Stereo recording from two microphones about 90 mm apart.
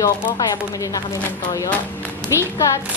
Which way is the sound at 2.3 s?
35° left (ahead or behind).